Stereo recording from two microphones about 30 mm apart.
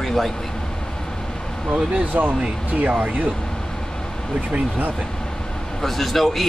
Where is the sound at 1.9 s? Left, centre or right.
Right.